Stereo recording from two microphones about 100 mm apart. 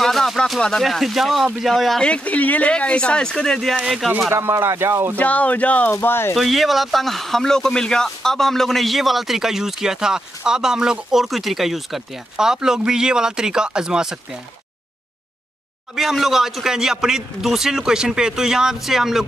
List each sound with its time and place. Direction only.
0.0 s speech: centre (ahead or behind)
4.3 s speech: 25° right (ahead or behind)
5.1 s speech: 15° left (ahead or behind)
5.9 s speech: 25° left (ahead or behind)
6.3 s speech: centre (ahead or behind)
16.0 s speech: centre (ahead or behind)